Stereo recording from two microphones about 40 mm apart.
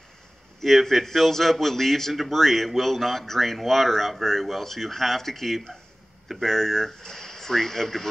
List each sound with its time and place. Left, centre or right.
0.6 s a man's voice: centre